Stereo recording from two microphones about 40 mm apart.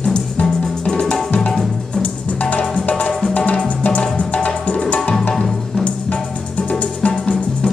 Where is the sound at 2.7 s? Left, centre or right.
Left.